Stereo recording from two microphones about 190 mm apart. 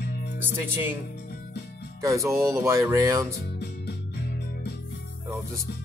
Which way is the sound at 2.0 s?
15° right (ahead or behind).